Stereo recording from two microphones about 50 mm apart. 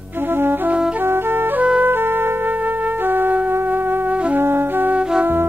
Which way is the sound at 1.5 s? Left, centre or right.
Right.